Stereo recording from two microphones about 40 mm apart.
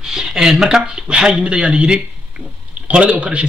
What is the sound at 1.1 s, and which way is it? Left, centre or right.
Speech, right.